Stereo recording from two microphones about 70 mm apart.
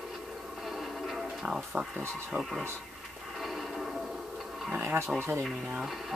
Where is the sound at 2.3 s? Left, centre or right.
Centre.